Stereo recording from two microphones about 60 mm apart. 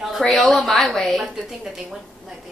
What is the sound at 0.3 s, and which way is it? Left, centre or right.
A woman's voice, centre.